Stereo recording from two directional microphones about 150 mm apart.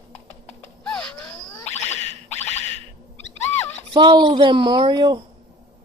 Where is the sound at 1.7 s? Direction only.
50° left (ahead or behind).